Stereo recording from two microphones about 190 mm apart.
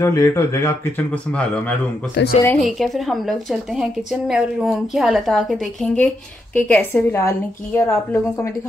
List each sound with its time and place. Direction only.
0.0 s a woman's voice: 15° left (ahead or behind)
2.2 s a woman's voice: 65° left (ahead or behind)
2.6 s a woman's voice: centre (ahead or behind)